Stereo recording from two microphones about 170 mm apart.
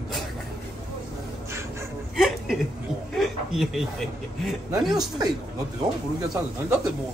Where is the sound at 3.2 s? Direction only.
Centre (ahead or behind).